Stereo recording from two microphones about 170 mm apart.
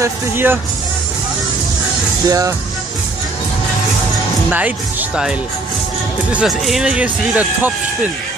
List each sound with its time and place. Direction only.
0.0 s speech: 10° right (ahead or behind)
2.2 s speech: 20° right (ahead or behind)
4.5 s speech: 10° right (ahead or behind)
6.3 s speech: centre (ahead or behind)